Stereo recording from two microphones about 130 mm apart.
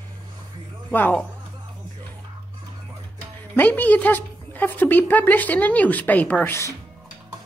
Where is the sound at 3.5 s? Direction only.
15° left (ahead or behind).